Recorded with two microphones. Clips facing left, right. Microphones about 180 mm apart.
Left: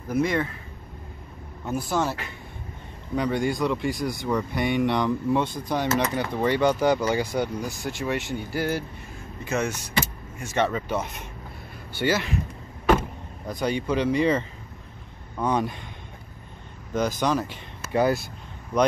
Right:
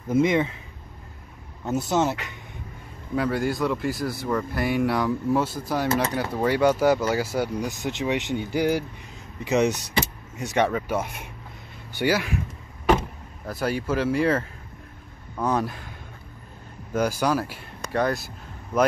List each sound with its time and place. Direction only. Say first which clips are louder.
0.1 s speech: right 3 dB; 20° right (ahead or behind)
1.7 s speech: right 3 dB; 20° right (ahead or behind)
3.2 s speech: even; 5° right (ahead or behind)
7.6 s speech: right 2 dB; 20° right (ahead or behind)
13.5 s speech: even; 5° right (ahead or behind)
15.4 s speech: even; centre (ahead or behind)
16.9 s speech: right 1 dB; 10° right (ahead or behind)
17.8 s speech: left 2 dB; 5° left (ahead or behind)